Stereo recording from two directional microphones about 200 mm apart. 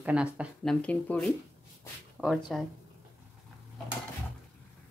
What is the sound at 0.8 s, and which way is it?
Speech, 5° left (ahead or behind).